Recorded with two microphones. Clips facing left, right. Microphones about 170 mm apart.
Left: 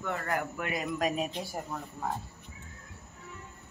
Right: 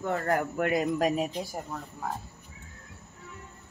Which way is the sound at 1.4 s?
Centre (ahead or behind).